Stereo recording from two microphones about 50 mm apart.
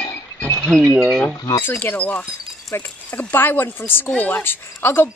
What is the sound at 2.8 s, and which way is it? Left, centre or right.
A woman's voice, left.